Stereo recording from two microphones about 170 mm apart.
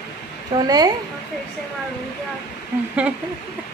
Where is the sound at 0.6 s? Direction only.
20° right (ahead or behind).